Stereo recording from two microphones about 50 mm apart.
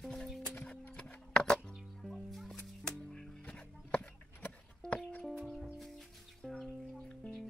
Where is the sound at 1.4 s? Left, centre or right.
Centre.